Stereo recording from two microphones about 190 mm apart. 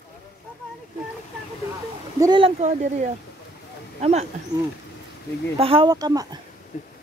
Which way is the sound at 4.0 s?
35° right (ahead or behind).